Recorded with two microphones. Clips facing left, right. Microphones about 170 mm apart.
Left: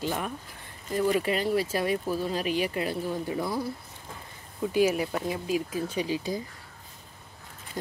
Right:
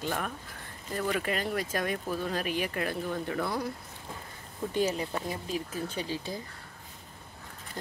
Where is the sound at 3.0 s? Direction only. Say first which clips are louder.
Left 2 dB; 10° left (ahead or behind).